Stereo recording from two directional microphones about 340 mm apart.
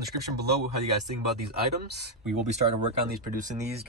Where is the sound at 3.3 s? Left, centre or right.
Right.